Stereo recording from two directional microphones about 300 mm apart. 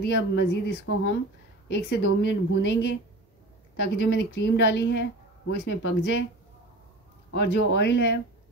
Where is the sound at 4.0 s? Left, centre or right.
Left.